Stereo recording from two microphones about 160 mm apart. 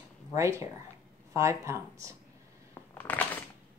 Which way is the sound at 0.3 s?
20° right (ahead or behind).